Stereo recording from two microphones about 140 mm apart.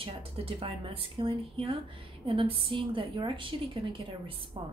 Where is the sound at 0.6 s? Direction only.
40° right (ahead or behind).